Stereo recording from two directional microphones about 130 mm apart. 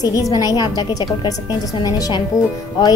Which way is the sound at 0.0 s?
25° left (ahead or behind).